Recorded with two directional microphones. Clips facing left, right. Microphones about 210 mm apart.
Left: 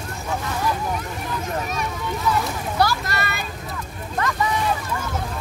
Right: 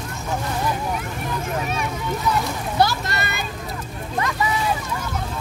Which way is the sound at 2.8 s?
25° right (ahead or behind).